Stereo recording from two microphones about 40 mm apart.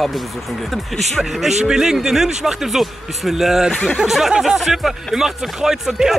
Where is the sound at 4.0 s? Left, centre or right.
Centre.